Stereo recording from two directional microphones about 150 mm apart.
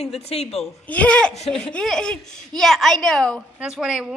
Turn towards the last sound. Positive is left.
turn(degrees=0)  # may be behind; listen again after turning